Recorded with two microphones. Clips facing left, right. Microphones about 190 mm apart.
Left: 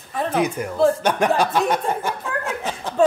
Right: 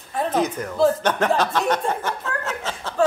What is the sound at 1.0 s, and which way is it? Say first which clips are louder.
Chuckle: left 1 dB; 10° left (ahead or behind).